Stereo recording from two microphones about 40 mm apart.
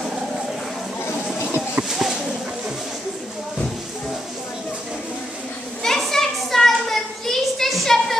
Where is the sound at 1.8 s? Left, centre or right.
Centre.